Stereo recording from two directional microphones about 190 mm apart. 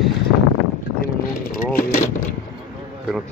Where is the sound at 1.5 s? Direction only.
50° left (ahead or behind).